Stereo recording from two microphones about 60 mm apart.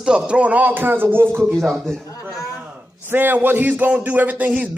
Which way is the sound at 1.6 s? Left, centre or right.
Centre.